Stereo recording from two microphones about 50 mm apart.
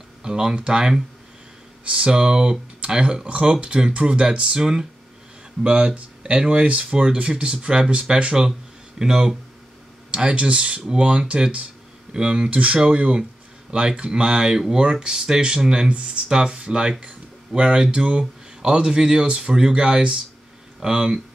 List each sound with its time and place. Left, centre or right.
0.2 s speech: centre